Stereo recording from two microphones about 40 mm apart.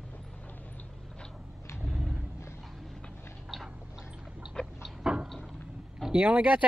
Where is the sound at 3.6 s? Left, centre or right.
Right.